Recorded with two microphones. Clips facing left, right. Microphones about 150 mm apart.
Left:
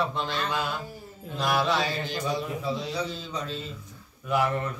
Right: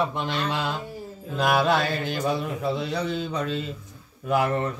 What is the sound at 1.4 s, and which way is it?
Speech, 55° right (ahead or behind).